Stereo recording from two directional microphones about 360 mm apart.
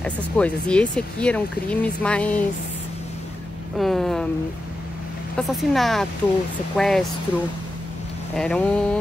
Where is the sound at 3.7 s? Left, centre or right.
Centre.